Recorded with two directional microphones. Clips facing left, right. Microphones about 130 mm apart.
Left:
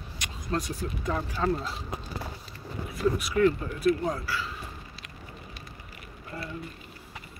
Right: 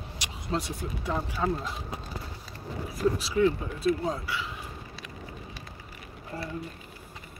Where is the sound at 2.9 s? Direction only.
35° right (ahead or behind).